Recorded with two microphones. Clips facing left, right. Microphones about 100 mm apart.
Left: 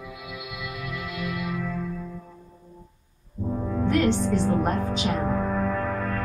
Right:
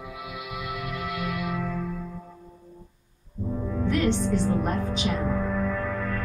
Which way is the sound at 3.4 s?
35° left (ahead or behind).